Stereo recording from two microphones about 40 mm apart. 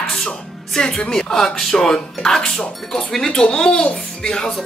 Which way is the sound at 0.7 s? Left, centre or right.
Left.